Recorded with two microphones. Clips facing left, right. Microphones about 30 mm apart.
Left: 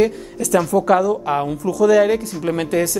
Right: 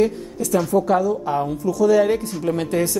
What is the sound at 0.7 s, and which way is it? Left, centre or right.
A woman's voice, left.